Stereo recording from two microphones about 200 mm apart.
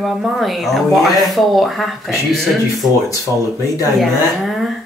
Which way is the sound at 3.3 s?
15° right (ahead or behind).